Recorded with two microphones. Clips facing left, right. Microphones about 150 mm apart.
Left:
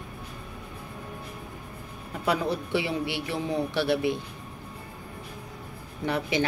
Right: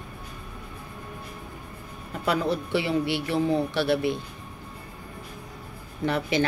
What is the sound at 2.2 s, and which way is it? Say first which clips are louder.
A woman's voice: right 1 dB; 15° left (ahead or behind).